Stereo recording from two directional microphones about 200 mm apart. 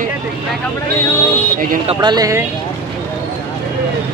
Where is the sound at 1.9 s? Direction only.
20° right (ahead or behind).